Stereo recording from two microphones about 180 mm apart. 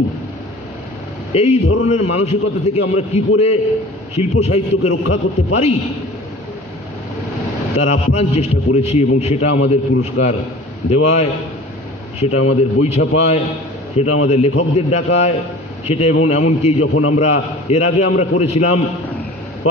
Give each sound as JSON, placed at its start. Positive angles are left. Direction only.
{"t": 1.3, "sound": "a man's voice", "side_deg": 35}
{"t": 7.7, "sound": "a man's voice", "side_deg": 35}